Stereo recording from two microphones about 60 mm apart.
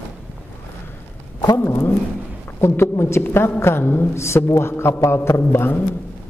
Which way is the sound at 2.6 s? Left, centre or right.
Left.